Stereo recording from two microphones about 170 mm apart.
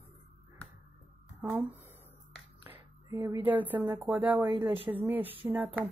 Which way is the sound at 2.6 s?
15° right (ahead or behind).